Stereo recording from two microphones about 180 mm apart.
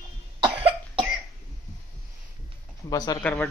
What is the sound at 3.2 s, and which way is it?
Speech, 10° left (ahead or behind).